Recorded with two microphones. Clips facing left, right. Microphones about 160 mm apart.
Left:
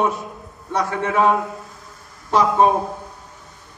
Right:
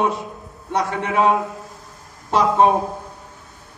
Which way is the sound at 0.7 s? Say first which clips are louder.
Even; 20° right (ahead or behind).